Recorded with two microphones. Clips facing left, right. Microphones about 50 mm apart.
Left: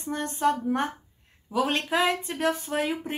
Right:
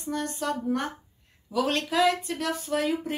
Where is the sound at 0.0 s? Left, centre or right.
Left.